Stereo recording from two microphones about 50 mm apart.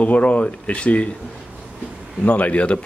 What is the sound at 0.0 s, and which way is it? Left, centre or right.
Speech, left.